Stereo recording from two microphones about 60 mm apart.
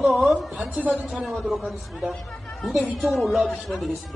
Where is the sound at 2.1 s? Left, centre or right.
Centre.